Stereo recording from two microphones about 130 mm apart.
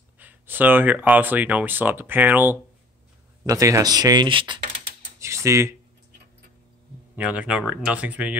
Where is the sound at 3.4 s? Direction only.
25° right (ahead or behind).